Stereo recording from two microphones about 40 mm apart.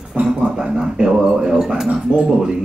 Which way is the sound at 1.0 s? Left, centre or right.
Centre.